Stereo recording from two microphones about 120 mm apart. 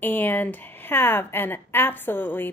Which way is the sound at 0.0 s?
15° left (ahead or behind).